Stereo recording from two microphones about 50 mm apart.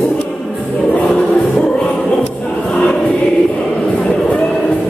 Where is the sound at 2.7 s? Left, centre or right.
Centre.